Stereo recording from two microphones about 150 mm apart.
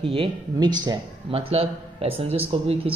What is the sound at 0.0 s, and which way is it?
Speech, 35° right (ahead or behind).